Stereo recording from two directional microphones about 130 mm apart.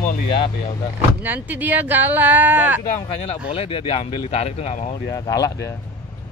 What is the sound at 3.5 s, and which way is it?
Speech, 45° left (ahead or behind).